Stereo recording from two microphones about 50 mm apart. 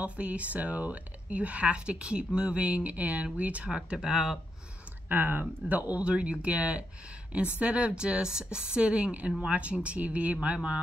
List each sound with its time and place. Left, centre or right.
0.0 s speech: right; by 4.4 s centre
5.0 s speech: right